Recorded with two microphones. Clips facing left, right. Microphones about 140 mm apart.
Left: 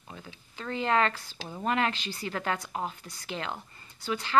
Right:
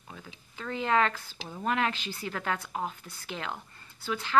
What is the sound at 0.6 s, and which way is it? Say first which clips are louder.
Speech: even; centre (ahead or behind).